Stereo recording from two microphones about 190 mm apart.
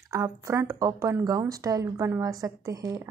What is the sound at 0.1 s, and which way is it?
Speech, 15° right (ahead or behind).